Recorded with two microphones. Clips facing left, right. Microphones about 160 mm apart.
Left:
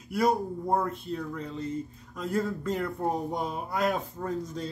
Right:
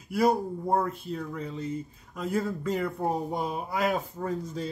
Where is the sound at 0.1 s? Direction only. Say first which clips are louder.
Right 1 dB; centre (ahead or behind).